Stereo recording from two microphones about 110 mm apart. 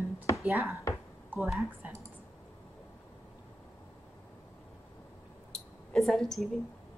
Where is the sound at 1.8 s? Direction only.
15° right (ahead or behind).